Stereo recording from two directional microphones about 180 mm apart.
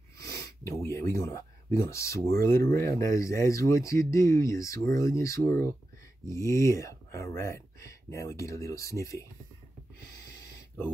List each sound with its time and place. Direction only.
0.2 s speech: 15° left (ahead or behind)